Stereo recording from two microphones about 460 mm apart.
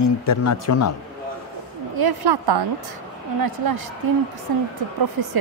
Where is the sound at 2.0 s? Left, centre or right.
Right.